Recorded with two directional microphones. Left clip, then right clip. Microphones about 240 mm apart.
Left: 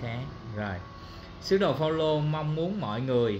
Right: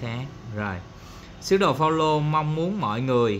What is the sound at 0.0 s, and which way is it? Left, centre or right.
A man's voice, centre.